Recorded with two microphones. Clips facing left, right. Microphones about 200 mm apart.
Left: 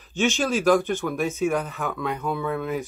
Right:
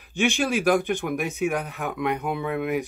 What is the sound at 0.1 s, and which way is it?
Speech, 15° right (ahead or behind).